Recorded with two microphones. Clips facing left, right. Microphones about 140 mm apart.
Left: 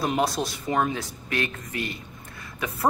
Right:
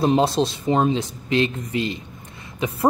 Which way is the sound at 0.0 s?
25° right (ahead or behind).